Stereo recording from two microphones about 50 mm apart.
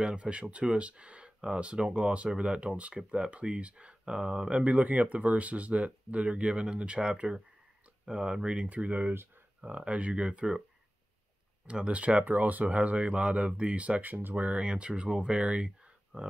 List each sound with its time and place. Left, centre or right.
0.0 s speech: right
11.6 s speech: right